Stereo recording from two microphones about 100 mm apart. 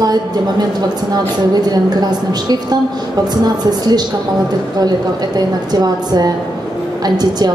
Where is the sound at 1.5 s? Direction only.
40° right (ahead or behind).